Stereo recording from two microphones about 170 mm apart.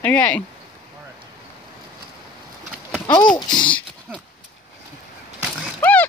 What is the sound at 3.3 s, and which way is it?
Speech, 25° left (ahead or behind).